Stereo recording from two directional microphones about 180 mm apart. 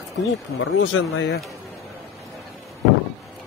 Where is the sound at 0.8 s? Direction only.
90° left.